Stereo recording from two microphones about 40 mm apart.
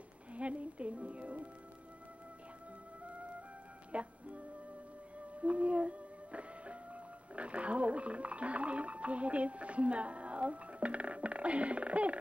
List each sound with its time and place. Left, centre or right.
0.3 s music: right
3.0 s music: right